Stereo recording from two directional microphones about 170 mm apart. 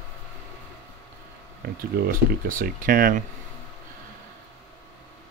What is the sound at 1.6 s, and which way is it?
Speech, 60° right (ahead or behind).